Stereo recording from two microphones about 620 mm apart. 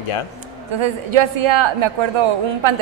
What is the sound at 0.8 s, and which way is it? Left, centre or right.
A woman's voice, right.